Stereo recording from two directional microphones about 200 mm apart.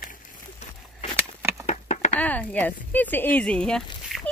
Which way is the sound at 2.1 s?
5° left (ahead or behind).